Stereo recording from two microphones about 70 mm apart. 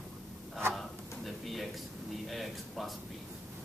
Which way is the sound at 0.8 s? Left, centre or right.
Centre.